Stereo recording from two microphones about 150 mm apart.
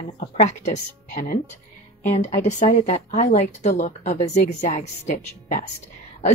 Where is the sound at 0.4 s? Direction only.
50° left (ahead or behind).